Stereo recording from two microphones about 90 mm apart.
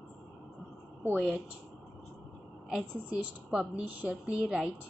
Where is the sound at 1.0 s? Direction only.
15° right (ahead or behind).